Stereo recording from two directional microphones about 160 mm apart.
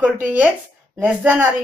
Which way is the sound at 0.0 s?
10° right (ahead or behind).